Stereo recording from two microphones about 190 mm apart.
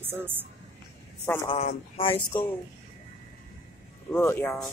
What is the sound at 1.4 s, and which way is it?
Speech, 35° left (ahead or behind).